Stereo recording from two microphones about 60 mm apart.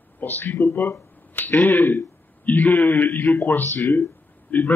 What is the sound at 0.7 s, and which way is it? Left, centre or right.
Speech, left.